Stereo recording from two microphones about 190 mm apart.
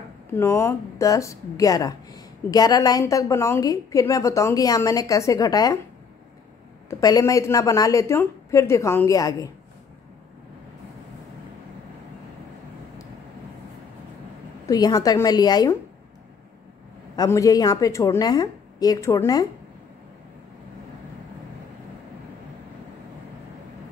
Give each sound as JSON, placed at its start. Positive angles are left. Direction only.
{"t": 0.4, "sound": "speech", "side_deg": 15}
{"t": 6.9, "sound": "speech", "side_deg": 20}
{"t": 14.7, "sound": "a woman's voice", "side_deg": 20}
{"t": 17.1, "sound": "a woman's voice", "side_deg": 20}